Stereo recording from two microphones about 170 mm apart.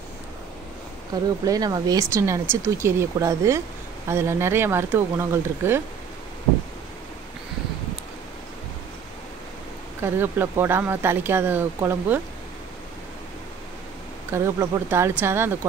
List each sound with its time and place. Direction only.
1.4 s speech: 20° right (ahead or behind)
10.0 s speech: 10° right (ahead or behind)
14.3 s speech: 15° right (ahead or behind)